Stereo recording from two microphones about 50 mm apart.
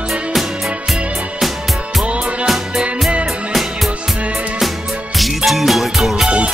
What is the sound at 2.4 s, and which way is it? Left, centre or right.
Music, centre.